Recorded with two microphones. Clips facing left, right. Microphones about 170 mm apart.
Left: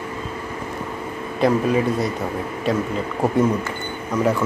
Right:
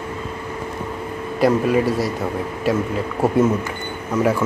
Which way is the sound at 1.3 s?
5° right (ahead or behind).